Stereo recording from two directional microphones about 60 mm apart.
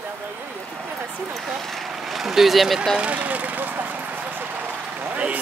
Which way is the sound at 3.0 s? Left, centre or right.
Right.